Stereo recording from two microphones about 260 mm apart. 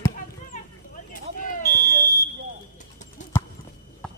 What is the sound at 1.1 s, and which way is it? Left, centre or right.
Smoke detector, left.